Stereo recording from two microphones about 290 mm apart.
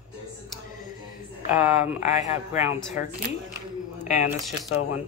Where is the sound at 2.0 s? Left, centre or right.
Left.